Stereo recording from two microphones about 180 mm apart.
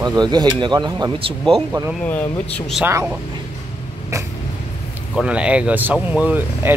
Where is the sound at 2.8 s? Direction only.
15° right (ahead or behind).